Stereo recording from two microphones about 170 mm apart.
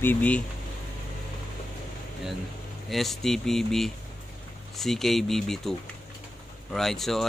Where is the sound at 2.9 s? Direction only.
Centre (ahead or behind).